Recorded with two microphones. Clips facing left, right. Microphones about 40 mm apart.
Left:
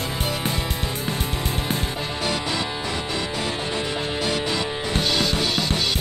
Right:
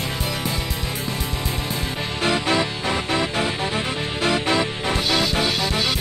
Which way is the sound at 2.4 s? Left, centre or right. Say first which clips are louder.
Right 5 dB; right.